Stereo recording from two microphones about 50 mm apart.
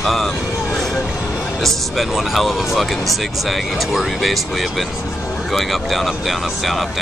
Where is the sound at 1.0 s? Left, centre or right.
Centre.